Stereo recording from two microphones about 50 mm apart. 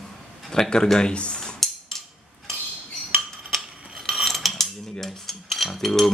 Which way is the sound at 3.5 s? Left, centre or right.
Centre.